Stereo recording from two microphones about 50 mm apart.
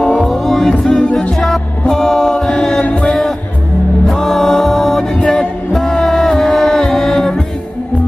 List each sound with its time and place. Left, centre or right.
0.2 s music: centre
1.0 s music: centre
1.3 s music: centre
4.1 s music: centre